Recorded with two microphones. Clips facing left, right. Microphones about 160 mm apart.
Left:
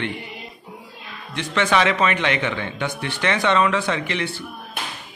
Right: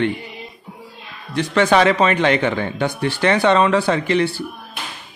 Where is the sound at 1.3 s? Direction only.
40° right (ahead or behind).